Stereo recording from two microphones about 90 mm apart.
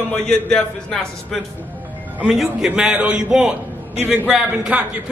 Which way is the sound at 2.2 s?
10° right (ahead or behind).